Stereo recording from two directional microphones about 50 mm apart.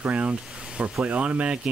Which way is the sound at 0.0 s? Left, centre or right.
Right.